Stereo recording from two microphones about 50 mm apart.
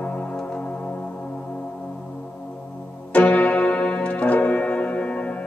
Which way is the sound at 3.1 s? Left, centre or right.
Left.